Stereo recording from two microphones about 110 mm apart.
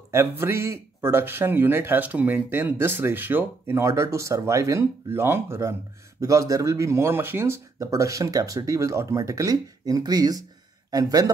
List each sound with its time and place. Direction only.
0.1 s speech: 20° right (ahead or behind)